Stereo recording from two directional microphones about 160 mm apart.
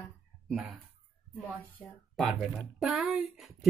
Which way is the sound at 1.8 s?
15° left (ahead or behind).